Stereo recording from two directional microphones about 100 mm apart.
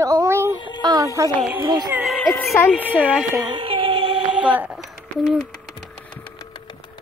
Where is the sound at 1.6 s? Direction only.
45° right (ahead or behind).